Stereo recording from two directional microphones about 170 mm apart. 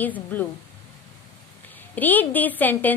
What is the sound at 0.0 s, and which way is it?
Speech, 10° left (ahead or behind).